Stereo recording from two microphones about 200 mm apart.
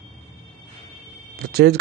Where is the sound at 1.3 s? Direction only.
50° right (ahead or behind).